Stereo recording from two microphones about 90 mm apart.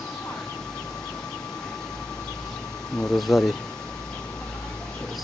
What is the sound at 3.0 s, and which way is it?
Speech, 5° left (ahead or behind).